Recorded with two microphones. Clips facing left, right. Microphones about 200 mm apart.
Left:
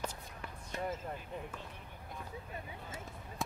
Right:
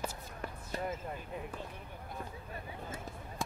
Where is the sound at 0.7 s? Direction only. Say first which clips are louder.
Right 1 dB; 35° right (ahead or behind).